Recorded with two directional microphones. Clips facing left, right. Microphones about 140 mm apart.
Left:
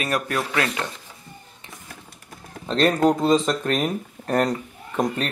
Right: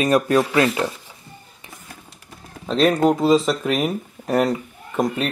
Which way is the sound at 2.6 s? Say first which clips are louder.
Right 2 dB; centre (ahead or behind).